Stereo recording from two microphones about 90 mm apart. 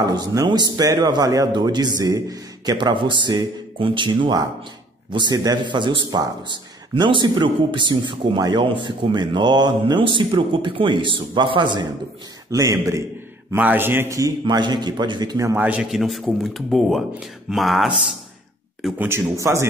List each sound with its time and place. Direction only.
0.1 s speech: 45° right (ahead or behind)
2.9 s a man's voice: 65° right (ahead or behind)
9.9 s a man's voice: 65° right (ahead or behind)
12.4 s speech: 40° right (ahead or behind)
13.6 s a man's voice: 20° right (ahead or behind)
14.4 s a man's voice: 55° right (ahead or behind)
15.5 s a man's voice: 15° right (ahead or behind)
15.9 s speech: centre (ahead or behind)
18.9 s speech: 30° right (ahead or behind)